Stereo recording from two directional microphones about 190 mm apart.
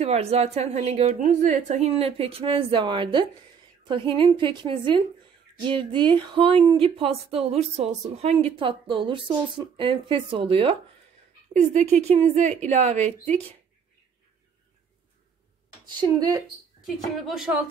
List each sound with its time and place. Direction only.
0.0 s a woman's voice: 35° right (ahead or behind)
16.0 s speech: 20° right (ahead or behind)
16.8 s speech: centre (ahead or behind)